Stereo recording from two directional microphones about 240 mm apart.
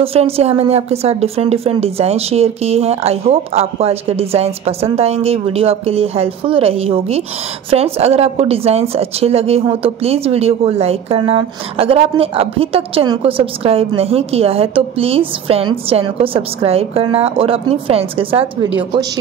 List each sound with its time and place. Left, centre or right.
0.0 s a woman's voice: right
18.7 s a woman's voice: centre